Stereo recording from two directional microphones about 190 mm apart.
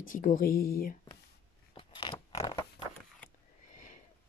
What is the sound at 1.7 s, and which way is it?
Zipper, 25° left (ahead or behind).